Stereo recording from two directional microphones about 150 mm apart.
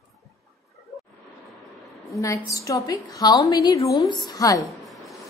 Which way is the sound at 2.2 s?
20° left (ahead or behind).